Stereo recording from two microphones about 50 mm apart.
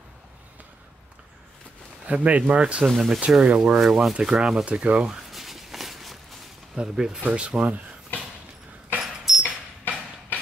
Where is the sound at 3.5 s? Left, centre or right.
Centre.